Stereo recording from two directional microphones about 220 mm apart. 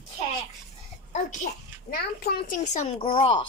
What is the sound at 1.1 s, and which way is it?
A child's voice, 40° left (ahead or behind).